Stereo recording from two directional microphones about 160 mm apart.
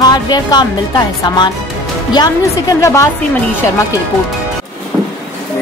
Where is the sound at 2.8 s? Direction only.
15° left (ahead or behind).